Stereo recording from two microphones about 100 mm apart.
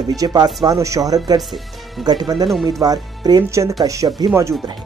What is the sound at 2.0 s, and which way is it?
Speech, 45° right (ahead or behind).